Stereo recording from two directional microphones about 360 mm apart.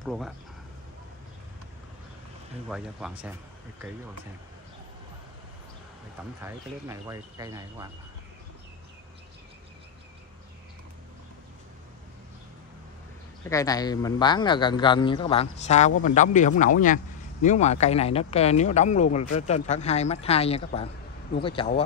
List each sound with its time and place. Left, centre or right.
0.0 s speech: centre
2.7 s speech: centre
6.4 s speech: centre
13.5 s speech: centre